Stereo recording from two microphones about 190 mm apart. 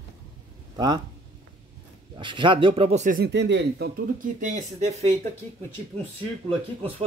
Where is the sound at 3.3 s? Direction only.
65° right (ahead or behind); by 5.1 s 35° right (ahead or behind).